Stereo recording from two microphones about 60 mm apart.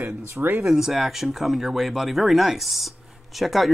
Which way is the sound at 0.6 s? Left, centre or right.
Centre.